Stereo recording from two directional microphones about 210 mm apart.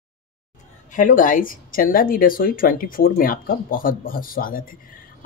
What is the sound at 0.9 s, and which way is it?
Speech, 40° left (ahead or behind).